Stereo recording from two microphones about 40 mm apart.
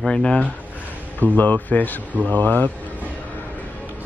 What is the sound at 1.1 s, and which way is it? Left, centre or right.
Speech, left.